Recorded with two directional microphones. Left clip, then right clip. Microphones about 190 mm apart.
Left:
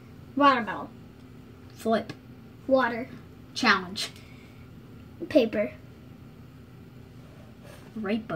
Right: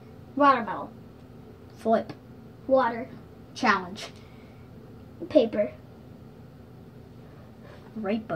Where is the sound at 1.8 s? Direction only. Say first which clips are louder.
Right 2 dB; 15° left (ahead or behind).